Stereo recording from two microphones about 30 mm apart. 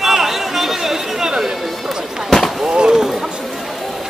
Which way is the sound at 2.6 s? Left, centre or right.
Right.